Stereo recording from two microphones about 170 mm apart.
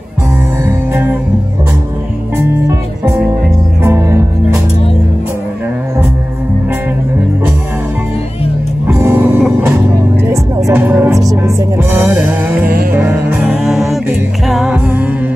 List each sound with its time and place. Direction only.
0.7 s music: 10° right (ahead or behind)
3.8 s music: 15° right (ahead or behind)
8.8 s music: 15° right (ahead or behind)